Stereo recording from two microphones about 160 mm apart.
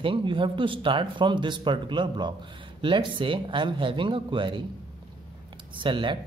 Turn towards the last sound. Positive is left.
turn(degrees=-30)  # may be behind; listen again after turning